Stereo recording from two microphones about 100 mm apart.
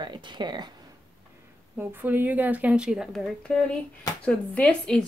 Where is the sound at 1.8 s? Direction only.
20° right (ahead or behind).